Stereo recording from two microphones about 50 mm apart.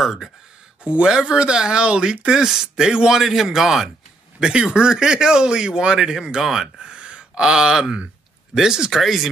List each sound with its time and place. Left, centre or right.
0.0 s speech: centre
0.8 s speech: centre
4.4 s speech: centre